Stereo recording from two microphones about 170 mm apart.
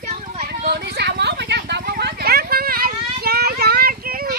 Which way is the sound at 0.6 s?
75° right (ahead or behind).